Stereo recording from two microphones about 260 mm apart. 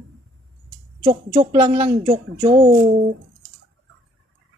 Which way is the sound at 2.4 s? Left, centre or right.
Centre.